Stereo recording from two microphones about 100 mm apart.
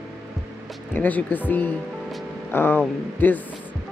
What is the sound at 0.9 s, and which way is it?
Speech, 15° left (ahead or behind).